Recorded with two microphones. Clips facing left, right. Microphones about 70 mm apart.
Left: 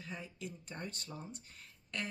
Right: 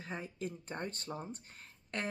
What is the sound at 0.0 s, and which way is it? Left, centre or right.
Speech, right.